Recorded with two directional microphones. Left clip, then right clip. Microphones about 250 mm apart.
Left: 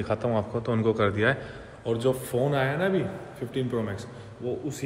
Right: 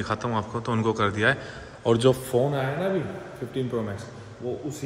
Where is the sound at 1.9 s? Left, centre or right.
Right.